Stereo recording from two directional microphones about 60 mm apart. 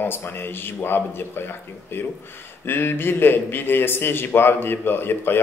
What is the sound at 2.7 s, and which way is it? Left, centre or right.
A man's voice, left.